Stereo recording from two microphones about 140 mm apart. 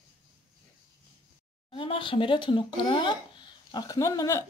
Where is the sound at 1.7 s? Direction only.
40° left (ahead or behind); by 4.4 s 20° left (ahead or behind).